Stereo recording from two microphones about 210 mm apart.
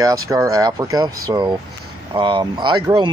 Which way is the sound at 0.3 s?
15° right (ahead or behind).